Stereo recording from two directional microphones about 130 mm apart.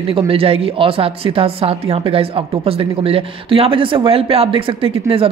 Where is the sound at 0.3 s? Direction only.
45° right (ahead or behind).